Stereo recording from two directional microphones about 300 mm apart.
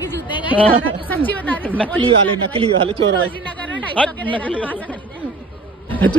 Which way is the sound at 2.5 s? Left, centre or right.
Centre.